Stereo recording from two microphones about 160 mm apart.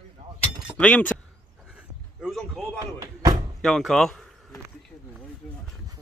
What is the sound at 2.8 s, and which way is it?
Slam, 25° right (ahead or behind).